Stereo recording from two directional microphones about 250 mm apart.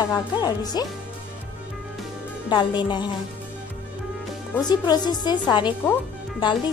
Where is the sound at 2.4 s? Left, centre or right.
Centre.